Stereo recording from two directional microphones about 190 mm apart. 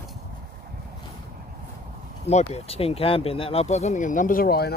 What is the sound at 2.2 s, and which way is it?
Speech, 35° left (ahead or behind).